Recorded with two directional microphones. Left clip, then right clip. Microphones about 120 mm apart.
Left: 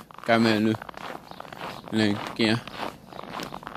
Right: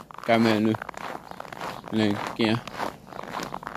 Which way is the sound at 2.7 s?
35° right (ahead or behind).